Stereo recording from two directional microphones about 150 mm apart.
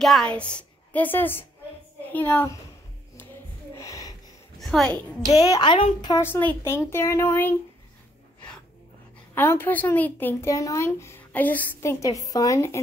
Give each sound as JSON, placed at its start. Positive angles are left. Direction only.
{"t": 0.0, "sound": "a woman's voice", "side_deg": 5}
{"t": 3.7, "sound": "a sound", "side_deg": 20}
{"t": 4.6, "sound": "a woman's voice", "side_deg": 0}
{"t": 5.4, "sound": "a woman's voice", "side_deg": 25}
{"t": 6.2, "sound": "a woman's voice", "side_deg": 15}
{"t": 9.3, "sound": "a woman's voice", "side_deg": 15}